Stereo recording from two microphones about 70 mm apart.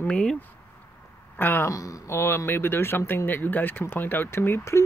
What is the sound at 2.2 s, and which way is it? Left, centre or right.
Speech, left.